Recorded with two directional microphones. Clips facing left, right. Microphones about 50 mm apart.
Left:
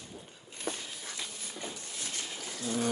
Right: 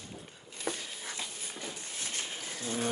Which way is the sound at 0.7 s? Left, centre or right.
Right.